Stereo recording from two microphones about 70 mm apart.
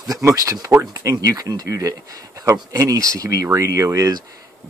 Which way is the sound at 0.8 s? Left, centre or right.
Right.